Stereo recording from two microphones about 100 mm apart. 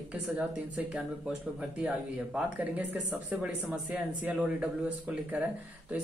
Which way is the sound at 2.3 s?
20° right (ahead or behind).